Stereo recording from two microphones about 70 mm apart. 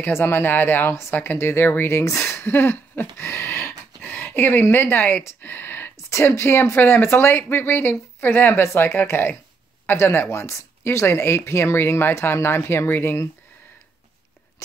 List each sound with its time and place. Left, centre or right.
0.0 s speech: left
5.4 s a sound: left
6.0 s speech: left